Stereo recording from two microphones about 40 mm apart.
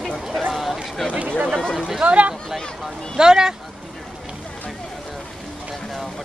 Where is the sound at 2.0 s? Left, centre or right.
Right.